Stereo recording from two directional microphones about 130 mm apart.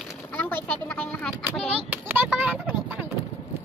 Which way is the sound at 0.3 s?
15° left (ahead or behind).